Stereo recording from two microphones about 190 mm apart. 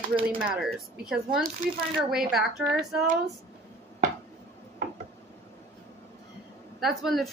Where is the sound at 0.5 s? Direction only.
Centre (ahead or behind).